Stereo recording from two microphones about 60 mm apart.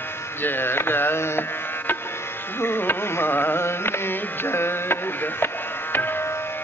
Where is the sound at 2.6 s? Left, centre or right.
Left.